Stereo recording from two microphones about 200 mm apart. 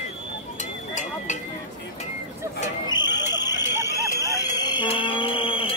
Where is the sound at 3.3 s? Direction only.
20° left (ahead or behind).